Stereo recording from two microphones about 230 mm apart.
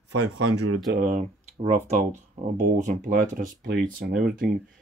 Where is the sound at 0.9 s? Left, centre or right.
Right.